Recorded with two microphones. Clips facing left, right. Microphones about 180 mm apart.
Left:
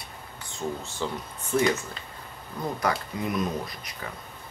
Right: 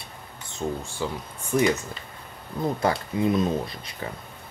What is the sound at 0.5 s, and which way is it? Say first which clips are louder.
Speech: right 3 dB; 20° right (ahead or behind).